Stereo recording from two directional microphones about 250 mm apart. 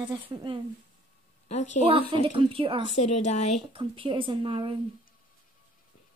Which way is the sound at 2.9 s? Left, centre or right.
Left.